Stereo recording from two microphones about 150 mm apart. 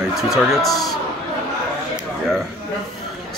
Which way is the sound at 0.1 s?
Centre (ahead or behind).